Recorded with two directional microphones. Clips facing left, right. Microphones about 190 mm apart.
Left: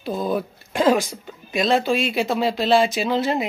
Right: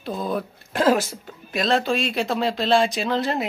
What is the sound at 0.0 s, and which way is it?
Speech, centre (ahead or behind).